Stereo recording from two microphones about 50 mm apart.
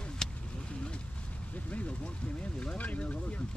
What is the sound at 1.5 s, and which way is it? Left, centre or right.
Vehicle, left.